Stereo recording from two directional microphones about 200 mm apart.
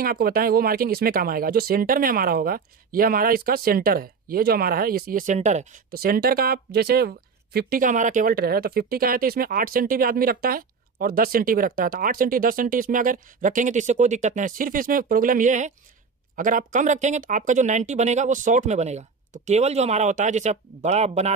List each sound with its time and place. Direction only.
0.0 s speech: 45° right (ahead or behind)